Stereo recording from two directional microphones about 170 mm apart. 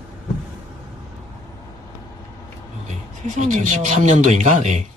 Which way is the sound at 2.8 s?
45° right (ahead or behind).